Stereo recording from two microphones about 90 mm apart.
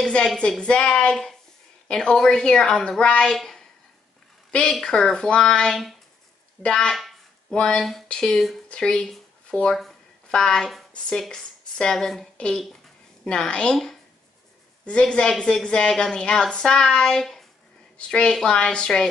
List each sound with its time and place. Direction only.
0.0 s a woman's voice: 5° left (ahead or behind)
6.6 s a sound: 10° left (ahead or behind)
7.5 s a woman's voice: 10° left (ahead or behind)